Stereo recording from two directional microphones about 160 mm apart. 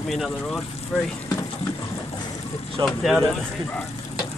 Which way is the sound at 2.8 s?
25° right (ahead or behind).